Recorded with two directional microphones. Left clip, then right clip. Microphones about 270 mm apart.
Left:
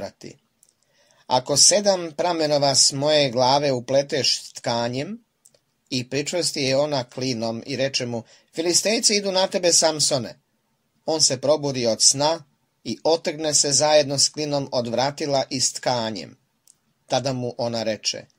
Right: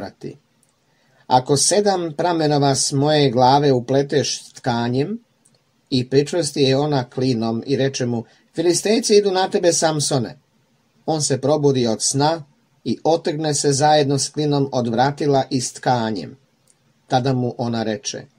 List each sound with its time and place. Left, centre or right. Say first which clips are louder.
1.5 s speech: right 1 dB; left
12.1 s a sound: right 2 dB; left
13.1 s speech: right 2 dB; left